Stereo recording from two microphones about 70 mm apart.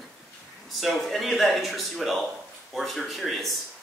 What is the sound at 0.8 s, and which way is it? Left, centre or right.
Speech, centre.